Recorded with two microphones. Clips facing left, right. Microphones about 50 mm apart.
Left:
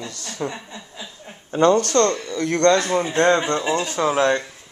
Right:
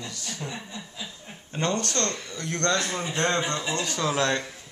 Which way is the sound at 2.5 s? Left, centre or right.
Left.